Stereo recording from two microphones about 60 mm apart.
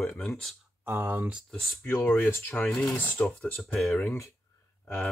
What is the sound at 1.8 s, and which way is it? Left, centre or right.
Speech, left.